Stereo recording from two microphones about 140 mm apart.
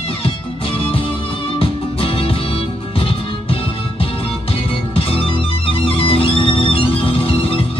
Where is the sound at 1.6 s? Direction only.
40° left (ahead or behind).